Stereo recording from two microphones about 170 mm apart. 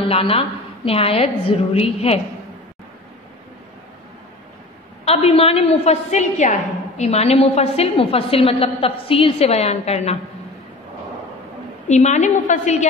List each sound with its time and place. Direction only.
0.1 s a woman's voice: 35° left (ahead or behind)
5.1 s a woman's voice: 35° left (ahead or behind)
11.9 s a woman's voice: 45° left (ahead or behind)